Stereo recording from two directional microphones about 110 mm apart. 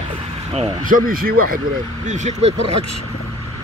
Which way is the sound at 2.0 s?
90° right.